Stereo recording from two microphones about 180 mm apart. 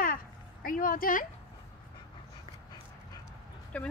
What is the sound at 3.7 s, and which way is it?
Speech, 5° left (ahead or behind).